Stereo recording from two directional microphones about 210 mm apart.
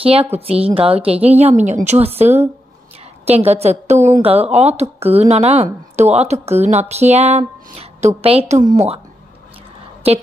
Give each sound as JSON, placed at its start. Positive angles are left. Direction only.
{"t": 0.0, "sound": "a woman's voice", "side_deg": -25}
{"t": 10.0, "sound": "speech", "side_deg": -30}